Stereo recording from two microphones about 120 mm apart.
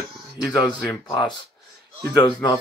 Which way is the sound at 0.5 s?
35° left (ahead or behind).